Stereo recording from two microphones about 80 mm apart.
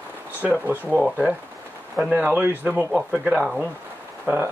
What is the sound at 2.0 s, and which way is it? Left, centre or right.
Speech, centre.